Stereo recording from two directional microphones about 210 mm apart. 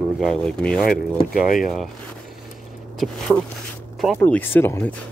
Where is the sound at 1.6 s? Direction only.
Centre (ahead or behind).